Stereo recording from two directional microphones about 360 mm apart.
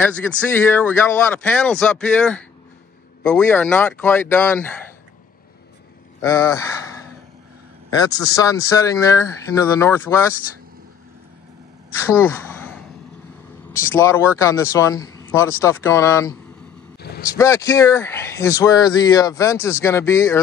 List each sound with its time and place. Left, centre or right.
0.0 s speech: centre
6.2 s speech: centre
7.9 s speech: centre
12.1 s a sound: centre
14.0 s speech: centre
17.0 s vehicle: left
17.3 s speech: centre